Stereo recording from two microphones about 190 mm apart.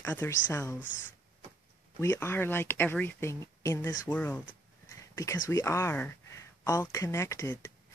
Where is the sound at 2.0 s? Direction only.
15° left (ahead or behind).